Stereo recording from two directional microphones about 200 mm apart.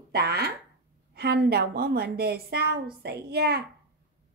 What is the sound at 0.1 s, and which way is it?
A woman's voice, 55° right (ahead or behind).